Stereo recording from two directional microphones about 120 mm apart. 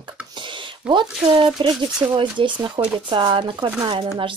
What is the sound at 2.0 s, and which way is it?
Speech, 25° right (ahead or behind).